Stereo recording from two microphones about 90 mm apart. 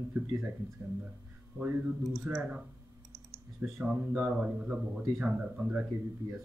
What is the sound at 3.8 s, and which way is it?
Speech, 15° right (ahead or behind).